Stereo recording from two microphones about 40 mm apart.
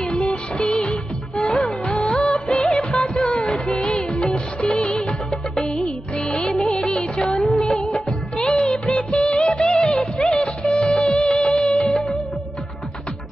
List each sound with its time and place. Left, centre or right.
0.3 s music of bollywood: left
2.0 s music of bollywood: left
4.1 s music: left
6.5 s music: centre
6.8 s music: centre
7.3 s music of bollywood: centre
8.9 s music of bollywood: left
10.2 s music: centre
10.7 s music of bollywood: left